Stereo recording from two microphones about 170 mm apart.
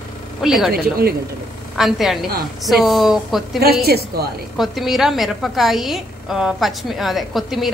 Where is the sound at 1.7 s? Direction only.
Centre (ahead or behind).